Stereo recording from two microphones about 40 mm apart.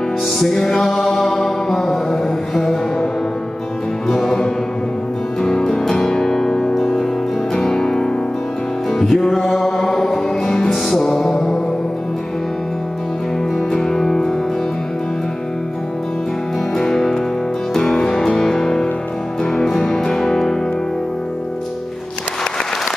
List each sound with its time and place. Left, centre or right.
0.4 s music: centre
4.1 s music: centre
13.7 s music: centre
16.7 s music: centre